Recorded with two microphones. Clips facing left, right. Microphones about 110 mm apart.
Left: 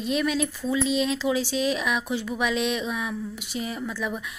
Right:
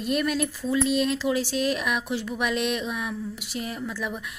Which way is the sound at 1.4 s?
45° right (ahead or behind).